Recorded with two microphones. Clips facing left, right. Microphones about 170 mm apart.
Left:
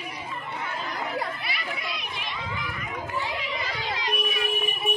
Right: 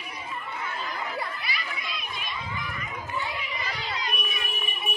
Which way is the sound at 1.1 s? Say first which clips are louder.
Left 3 dB; 60° left (ahead or behind).